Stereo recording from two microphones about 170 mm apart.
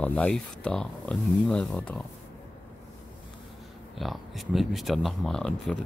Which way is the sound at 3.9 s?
Centre (ahead or behind).